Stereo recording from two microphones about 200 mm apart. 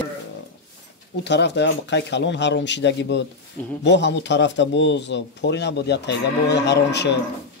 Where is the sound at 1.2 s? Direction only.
60° left (ahead or behind).